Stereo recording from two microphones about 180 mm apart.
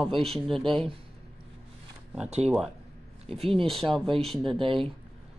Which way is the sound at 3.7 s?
Centre (ahead or behind).